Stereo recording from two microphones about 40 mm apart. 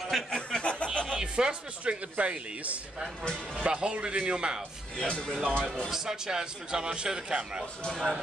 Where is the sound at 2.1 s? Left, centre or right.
Right.